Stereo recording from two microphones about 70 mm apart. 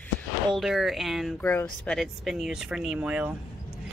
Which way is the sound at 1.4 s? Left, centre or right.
Left.